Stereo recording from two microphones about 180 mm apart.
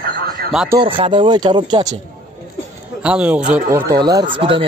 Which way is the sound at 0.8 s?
30° right (ahead or behind).